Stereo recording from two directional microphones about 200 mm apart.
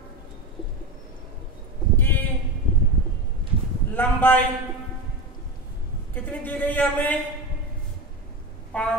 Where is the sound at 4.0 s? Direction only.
10° left (ahead or behind).